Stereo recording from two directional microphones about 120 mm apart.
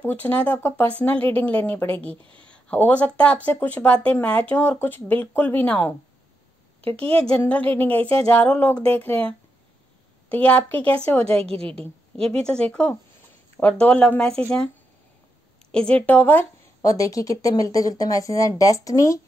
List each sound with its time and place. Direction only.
0.0 s a woman's voice: 15° left (ahead or behind)
2.0 s speech: 50° right (ahead or behind)
2.4 s a sound: 10° left (ahead or behind)
3.4 s a woman's voice: 10° left (ahead or behind)
7.1 s a woman's voice: 10° left (ahead or behind)
10.3 s a woman's voice: 10° left (ahead or behind)
11.4 s speech: 50° right (ahead or behind)
11.8 s a woman's voice: 10° left (ahead or behind)
15.7 s a woman's voice: 10° left (ahead or behind)
16.8 s speech: 30° left (ahead or behind)